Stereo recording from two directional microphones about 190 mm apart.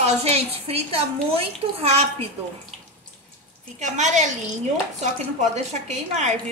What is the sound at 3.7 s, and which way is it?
A woman's voice, 40° right (ahead or behind).